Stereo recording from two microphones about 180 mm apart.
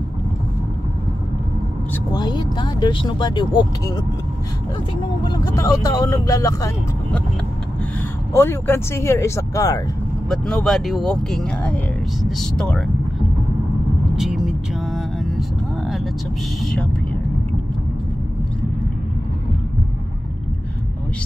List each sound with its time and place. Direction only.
2.1 s speech: 25° left (ahead or behind)
5.2 s speech: 25° left (ahead or behind)
8.3 s speech: 15° left (ahead or behind)
10.3 s speech: centre (ahead or behind)
14.1 s vehicle: centre (ahead or behind)
16.6 s speech: 5° left (ahead or behind)